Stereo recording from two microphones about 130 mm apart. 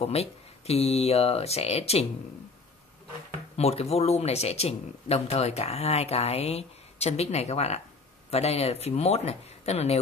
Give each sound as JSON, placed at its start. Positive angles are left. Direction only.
{"t": 0.0, "sound": "speech", "side_deg": 50}
{"t": 3.5, "sound": "speech", "side_deg": 55}